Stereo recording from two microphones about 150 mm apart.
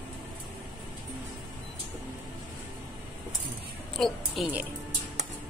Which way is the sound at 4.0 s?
5° left (ahead or behind).